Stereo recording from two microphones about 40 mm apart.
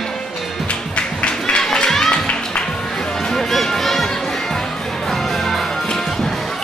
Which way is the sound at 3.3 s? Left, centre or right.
Centre.